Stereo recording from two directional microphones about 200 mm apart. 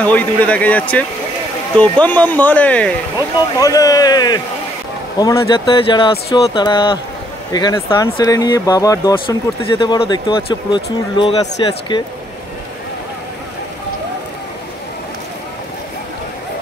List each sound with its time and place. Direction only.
0.0 s speech: 5° left (ahead or behind)
3.5 s speech: 15° left (ahead or behind)